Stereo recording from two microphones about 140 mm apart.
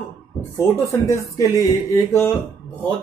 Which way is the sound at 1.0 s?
20° left (ahead or behind).